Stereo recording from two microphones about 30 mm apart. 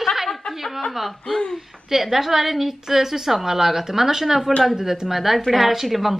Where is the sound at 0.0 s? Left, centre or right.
Centre.